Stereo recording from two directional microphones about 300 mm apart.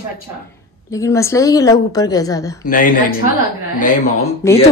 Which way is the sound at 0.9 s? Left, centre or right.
Centre.